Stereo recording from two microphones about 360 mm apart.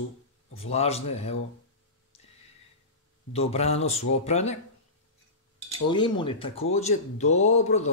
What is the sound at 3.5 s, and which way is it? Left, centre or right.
Speech, centre.